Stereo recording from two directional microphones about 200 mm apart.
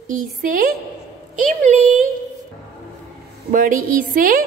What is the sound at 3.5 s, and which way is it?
Speech, 40° right (ahead or behind).